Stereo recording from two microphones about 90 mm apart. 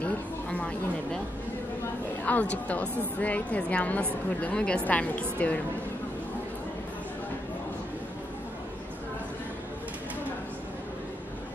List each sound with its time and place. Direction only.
0.0 s speech: 15° left (ahead or behind)
2.2 s a woman's voice: 15° left (ahead or behind)